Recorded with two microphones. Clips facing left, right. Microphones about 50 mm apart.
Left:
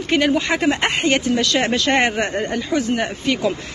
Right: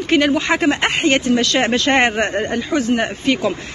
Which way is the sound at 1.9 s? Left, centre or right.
Right.